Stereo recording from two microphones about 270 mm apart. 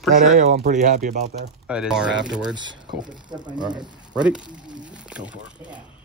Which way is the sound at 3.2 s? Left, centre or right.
Centre.